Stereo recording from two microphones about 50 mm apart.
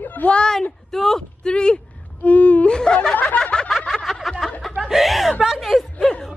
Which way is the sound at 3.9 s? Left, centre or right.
Centre.